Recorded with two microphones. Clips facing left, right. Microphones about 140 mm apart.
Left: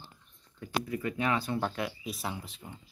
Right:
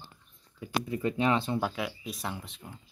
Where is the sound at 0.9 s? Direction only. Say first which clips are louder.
Right 4 dB; 25° right (ahead or behind).